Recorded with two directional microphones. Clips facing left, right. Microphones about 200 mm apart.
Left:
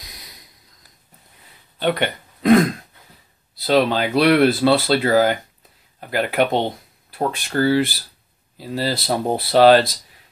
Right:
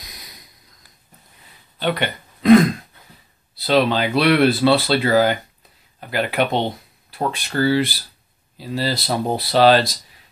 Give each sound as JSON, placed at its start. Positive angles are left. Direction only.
{"t": 1.8, "sound": "speech", "side_deg": 50}